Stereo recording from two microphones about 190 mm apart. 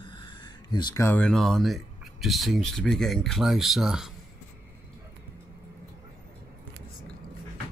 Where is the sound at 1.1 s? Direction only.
5° left (ahead or behind).